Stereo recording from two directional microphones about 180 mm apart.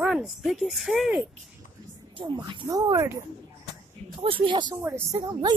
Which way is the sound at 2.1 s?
25° right (ahead or behind).